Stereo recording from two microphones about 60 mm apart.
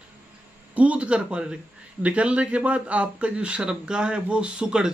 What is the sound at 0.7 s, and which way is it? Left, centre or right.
A man's voice, right.